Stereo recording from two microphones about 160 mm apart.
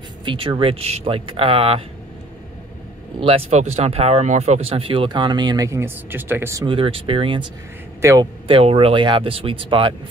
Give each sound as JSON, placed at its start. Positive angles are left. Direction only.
{"t": 0.2, "sound": "speech", "side_deg": -30}
{"t": 3.2, "sound": "speech", "side_deg": -35}
{"t": 6.6, "sound": "speech", "side_deg": -35}
{"t": 8.0, "sound": "a man's voice", "side_deg": -20}
{"t": 8.5, "sound": "speech", "side_deg": -35}